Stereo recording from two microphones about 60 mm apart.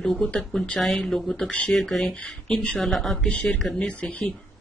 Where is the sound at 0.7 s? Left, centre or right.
Centre.